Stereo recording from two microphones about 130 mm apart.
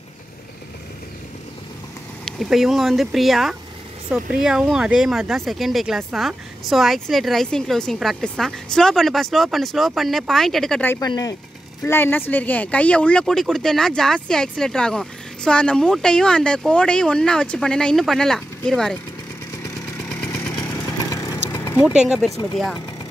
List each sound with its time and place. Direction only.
2.2 s speech: centre (ahead or behind)
11.0 s speech: 30° left (ahead or behind)
11.8 s speech: 15° left (ahead or behind)
21.1 s vehicle: 25° left (ahead or behind)
22.0 s speech: 5° right (ahead or behind)